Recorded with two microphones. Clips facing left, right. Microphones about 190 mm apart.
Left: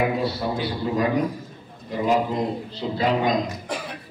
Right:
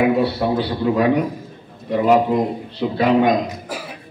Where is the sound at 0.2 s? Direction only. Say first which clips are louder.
Right 6 dB; 65° right (ahead or behind).